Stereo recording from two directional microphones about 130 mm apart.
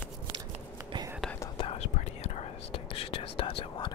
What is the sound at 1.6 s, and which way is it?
Whispering, 50° left (ahead or behind).